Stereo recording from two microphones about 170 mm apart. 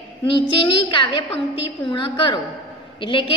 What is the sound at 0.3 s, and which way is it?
A woman's voice, 30° left (ahead or behind).